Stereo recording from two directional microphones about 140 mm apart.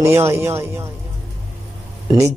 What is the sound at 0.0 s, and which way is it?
Speech, 20° right (ahead or behind).